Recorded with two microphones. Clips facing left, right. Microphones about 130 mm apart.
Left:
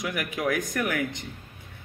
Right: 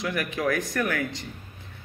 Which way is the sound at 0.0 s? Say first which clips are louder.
Right 2 dB; 10° left (ahead or behind).